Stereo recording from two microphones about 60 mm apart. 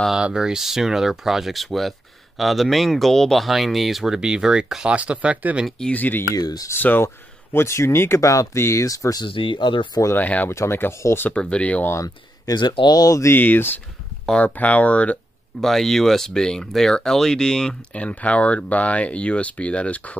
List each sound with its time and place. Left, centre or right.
0.1 s speech: centre
5.9 s speech: left
6.3 s speech: left
6.8 s speech: left
7.5 s speech: left
8.8 s speech: left
10.1 s speech: left
10.5 s speech: left
11.3 s speech: centre
12.0 s speech: left
13.3 s speech: left
15.6 s speech: centre; by 20.2 s left